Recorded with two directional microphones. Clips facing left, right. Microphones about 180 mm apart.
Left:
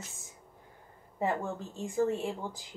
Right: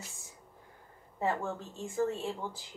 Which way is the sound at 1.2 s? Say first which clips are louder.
Left 1 dB; 15° left (ahead or behind).